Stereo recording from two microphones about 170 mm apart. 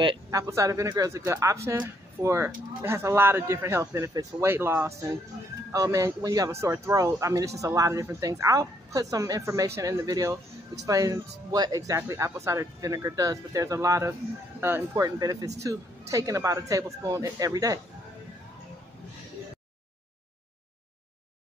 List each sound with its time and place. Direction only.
0.0 s speech: 30° right (ahead or behind)
0.4 s speech: 20° right (ahead or behind)